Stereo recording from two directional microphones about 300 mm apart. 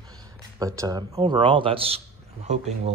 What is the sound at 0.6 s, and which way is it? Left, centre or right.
Speech, centre.